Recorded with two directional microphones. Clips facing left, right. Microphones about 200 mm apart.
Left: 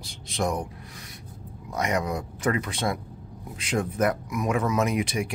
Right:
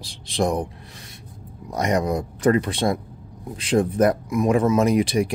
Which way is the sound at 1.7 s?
35° right (ahead or behind).